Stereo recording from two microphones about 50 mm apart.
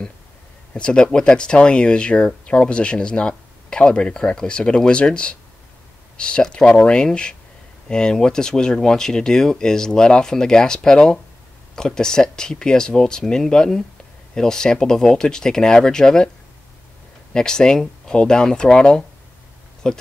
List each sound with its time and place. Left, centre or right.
0.7 s speech: left
17.3 s speech: centre